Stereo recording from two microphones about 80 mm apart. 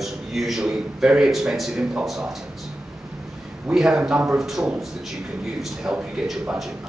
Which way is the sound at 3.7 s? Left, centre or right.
Centre.